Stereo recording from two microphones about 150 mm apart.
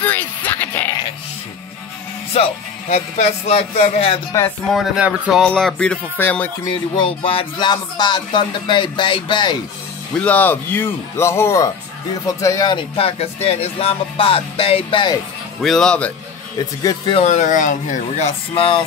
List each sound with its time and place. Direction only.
0.0 s a sound: 10° left (ahead or behind)
2.3 s speech: 45° left (ahead or behind)
4.3 s speech: 20° left (ahead or behind)
4.7 s speech: 10° right (ahead or behind)
5.4 s speech: 5° left (ahead or behind)
7.0 s speech: 35° left (ahead or behind)
10.1 s speech: 10° left (ahead or behind); by 15.1 s 35° left (ahead or behind)
15.6 s a man's voice: 5° left (ahead or behind)
16.8 s speech: 30° left (ahead or behind)
17.2 s speech: 55° left (ahead or behind); by 18.9 s 35° left (ahead or behind)